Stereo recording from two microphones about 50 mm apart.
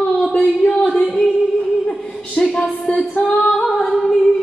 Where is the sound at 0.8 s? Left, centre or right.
Centre.